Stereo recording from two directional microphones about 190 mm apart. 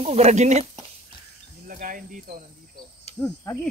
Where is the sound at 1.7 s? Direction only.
45° right (ahead or behind).